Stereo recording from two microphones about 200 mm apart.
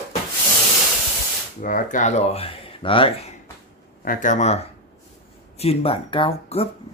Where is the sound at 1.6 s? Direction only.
40° left (ahead or behind).